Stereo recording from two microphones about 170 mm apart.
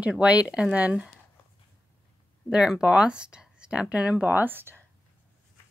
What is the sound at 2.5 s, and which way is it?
Speech, 5° right (ahead or behind).